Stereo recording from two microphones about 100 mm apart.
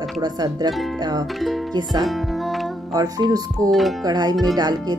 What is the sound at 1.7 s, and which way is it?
Speech, 40° right (ahead or behind).